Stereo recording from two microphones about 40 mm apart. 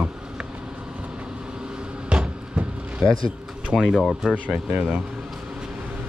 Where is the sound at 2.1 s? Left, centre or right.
Right.